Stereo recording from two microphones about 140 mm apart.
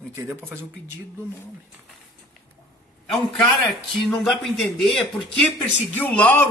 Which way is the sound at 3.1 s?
Centre (ahead or behind).